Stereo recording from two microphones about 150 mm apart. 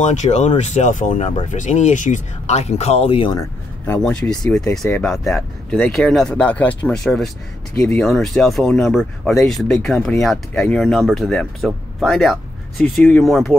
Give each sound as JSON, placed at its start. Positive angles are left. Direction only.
{"t": 0.0, "sound": "speech", "side_deg": 55}
{"t": 3.3, "sound": "a man's voice", "side_deg": 15}
{"t": 4.0, "sound": "speech", "side_deg": 5}